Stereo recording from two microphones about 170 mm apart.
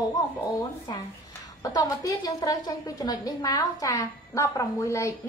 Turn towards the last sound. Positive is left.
turn(degrees=20)  # may be behind; listen again after turning